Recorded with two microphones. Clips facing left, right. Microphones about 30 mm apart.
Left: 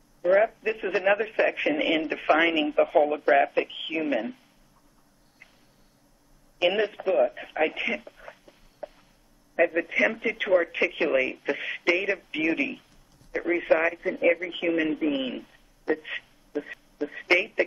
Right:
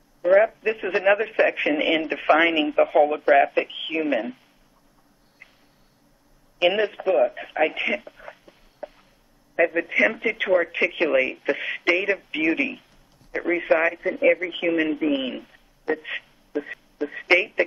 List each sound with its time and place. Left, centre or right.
0.2 s speech: centre
5.4 s a sound: centre
6.6 s speech: centre